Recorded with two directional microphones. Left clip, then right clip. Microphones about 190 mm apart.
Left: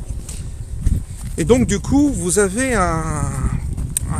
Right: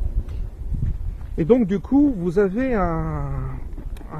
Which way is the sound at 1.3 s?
15° left (ahead or behind).